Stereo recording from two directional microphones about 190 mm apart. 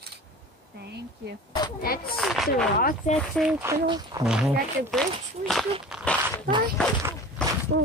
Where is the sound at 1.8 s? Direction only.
50° left (ahead or behind).